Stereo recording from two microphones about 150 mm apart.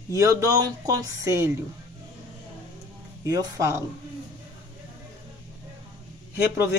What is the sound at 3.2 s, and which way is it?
Speech, 25° right (ahead or behind).